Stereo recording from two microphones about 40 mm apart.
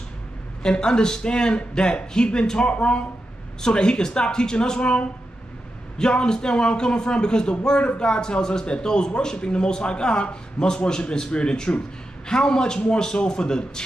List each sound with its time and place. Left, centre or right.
0.6 s a man's voice: centre